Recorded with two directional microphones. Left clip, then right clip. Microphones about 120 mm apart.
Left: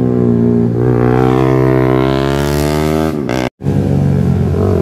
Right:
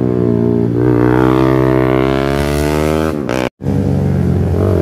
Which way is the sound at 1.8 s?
25° left (ahead or behind).